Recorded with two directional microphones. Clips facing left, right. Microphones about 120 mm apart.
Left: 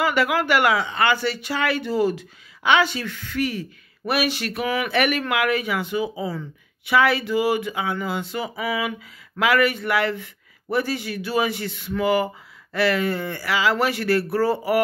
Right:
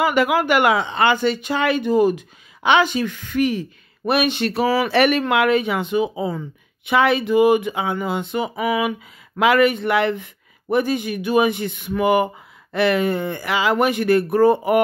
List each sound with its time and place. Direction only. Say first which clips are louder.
0.0 s speech: right 3 dB; 15° right (ahead or behind)